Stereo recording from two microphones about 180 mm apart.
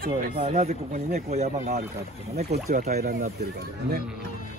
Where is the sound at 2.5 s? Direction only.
60° right (ahead or behind).